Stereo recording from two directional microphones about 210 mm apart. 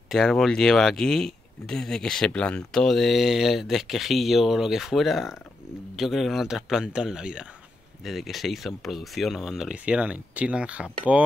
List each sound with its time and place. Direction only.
0.1 s speech: centre (ahead or behind)